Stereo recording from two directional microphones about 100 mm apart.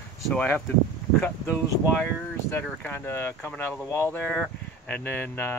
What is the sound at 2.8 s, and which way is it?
Speech, 20° left (ahead or behind).